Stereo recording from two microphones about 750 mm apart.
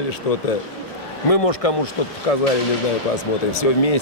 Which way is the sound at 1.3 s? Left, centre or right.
Left.